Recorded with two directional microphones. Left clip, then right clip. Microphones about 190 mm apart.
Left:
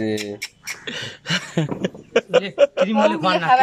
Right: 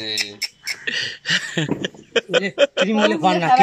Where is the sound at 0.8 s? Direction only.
Centre (ahead or behind).